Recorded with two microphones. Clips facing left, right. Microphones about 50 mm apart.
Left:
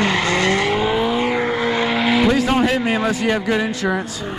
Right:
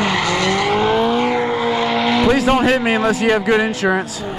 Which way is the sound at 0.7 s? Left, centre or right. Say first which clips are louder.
Right 3 dB; centre.